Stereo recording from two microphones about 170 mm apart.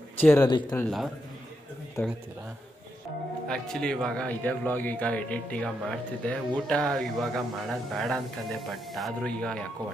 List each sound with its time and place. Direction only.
0.2 s speech: 15° left (ahead or behind)
0.5 s speech: 25° left (ahead or behind)
0.8 s speech: centre (ahead or behind)
2.0 s speech: 15° left (ahead or behind)
3.4 s speech: 5° left (ahead or behind)